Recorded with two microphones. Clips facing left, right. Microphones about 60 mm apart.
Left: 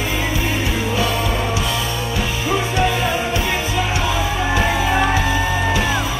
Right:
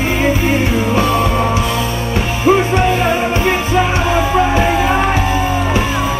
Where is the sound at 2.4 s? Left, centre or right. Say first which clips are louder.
Right 8 dB; right.